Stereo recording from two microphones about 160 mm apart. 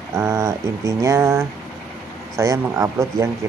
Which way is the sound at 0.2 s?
20° right (ahead or behind).